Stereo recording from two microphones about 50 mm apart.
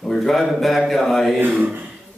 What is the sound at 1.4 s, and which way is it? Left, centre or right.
Speech, right.